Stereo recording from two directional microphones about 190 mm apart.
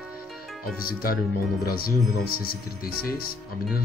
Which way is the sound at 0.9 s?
50° left (ahead or behind).